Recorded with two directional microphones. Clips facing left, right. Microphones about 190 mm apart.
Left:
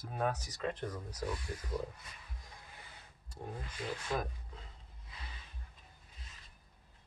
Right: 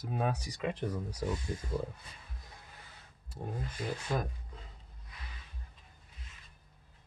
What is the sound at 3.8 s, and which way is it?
Speech, 5° right (ahead or behind).